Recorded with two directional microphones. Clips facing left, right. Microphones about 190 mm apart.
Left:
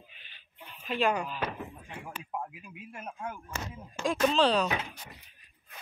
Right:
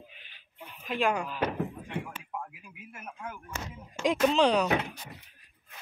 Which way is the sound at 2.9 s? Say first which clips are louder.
Left 2 dB; 30° left (ahead or behind).